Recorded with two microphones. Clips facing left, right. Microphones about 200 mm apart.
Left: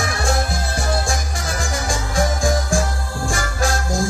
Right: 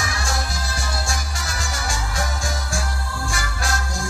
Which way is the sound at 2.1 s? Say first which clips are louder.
Left 9 dB; 50° left (ahead or behind).